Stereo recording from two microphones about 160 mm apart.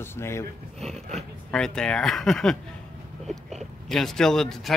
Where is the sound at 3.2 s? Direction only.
Centre (ahead or behind).